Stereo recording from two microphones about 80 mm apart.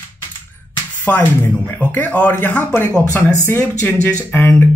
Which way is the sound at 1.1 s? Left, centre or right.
Left.